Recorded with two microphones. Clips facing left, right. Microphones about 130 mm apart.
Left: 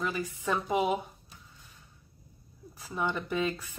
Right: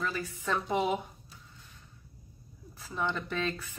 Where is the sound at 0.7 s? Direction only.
Centre (ahead or behind).